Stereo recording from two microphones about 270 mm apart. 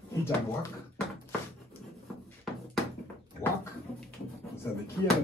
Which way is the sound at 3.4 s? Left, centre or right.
Centre.